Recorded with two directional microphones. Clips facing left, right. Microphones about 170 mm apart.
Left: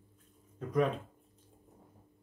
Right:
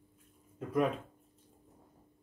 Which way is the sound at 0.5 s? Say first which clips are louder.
Left 1 dB; 5° right (ahead or behind).